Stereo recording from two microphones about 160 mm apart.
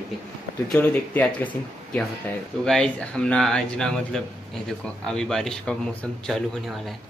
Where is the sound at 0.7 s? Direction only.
10° left (ahead or behind).